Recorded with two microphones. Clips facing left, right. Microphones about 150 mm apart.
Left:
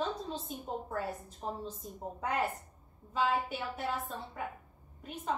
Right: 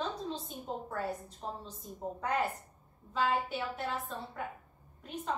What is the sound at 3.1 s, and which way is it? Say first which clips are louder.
A woman's voice: even; centre (ahead or behind).